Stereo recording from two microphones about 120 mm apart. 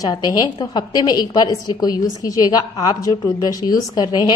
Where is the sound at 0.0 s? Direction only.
30° left (ahead or behind).